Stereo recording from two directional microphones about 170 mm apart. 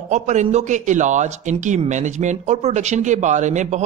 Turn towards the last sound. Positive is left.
turn(degrees=-45)  # may be behind; listen again after turning